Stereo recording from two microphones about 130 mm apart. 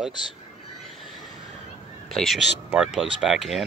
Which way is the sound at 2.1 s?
Centre (ahead or behind).